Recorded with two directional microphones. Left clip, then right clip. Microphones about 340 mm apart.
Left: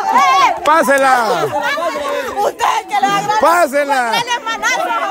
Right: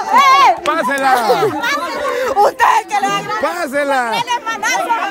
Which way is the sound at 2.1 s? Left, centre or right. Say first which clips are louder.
Right 4 dB; centre.